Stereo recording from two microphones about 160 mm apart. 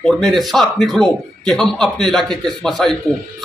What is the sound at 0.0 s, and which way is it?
A man's voice, 5° left (ahead or behind).